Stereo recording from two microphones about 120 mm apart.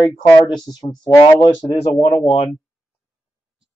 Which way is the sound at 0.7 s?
35° left (ahead or behind).